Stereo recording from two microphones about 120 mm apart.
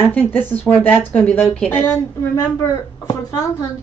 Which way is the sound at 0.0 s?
15° left (ahead or behind).